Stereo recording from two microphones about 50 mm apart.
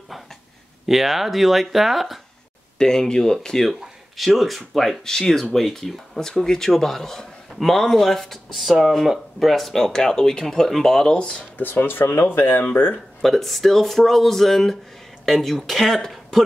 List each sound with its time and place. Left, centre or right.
0.8 s speech: centre
2.8 s speech: centre
11.7 s speech: left
12.9 s speech: centre